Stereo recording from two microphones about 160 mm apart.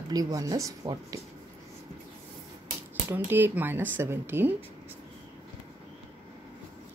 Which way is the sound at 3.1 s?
10° right (ahead or behind).